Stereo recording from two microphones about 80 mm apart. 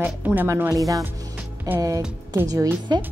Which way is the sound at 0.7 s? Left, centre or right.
Right.